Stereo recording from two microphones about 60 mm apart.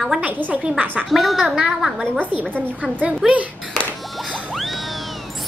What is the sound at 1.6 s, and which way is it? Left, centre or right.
Speech, centre.